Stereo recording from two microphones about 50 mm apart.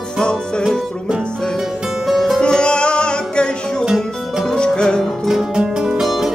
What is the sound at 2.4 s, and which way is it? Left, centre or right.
Music, centre.